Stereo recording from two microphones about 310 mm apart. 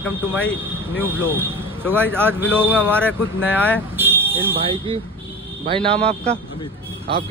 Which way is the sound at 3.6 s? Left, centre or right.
Centre.